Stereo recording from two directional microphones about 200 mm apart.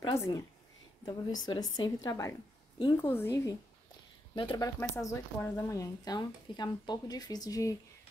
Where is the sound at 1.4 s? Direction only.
20° left (ahead or behind).